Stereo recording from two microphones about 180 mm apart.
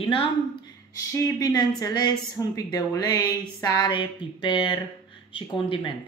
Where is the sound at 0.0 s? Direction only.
30° left (ahead or behind).